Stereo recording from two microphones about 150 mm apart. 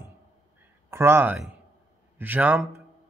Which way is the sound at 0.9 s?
15° right (ahead or behind).